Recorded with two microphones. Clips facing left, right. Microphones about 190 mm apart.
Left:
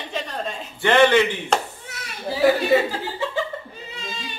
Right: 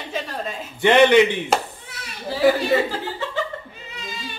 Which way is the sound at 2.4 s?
Centre (ahead or behind).